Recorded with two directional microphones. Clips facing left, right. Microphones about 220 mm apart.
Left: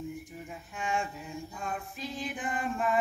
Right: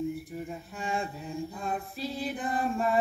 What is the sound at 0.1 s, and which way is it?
Mantra, 35° right (ahead or behind).